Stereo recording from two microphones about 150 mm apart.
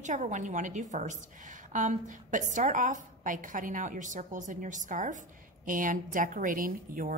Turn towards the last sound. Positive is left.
turn(degrees=-70)  # may be behind; listen again after turning